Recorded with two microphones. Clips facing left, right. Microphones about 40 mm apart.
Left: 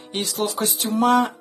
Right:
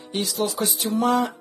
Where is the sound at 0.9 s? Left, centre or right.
Left.